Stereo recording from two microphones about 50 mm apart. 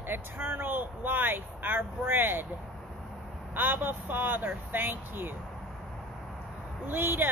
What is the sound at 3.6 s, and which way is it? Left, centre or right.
Speech, right.